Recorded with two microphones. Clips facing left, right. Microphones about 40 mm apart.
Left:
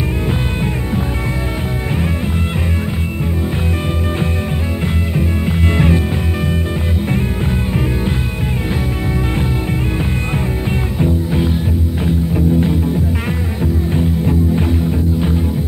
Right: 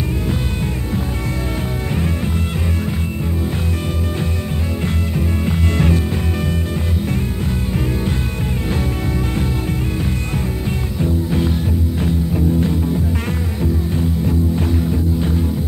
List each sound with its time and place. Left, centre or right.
4.8 s music: centre
11.0 s music: centre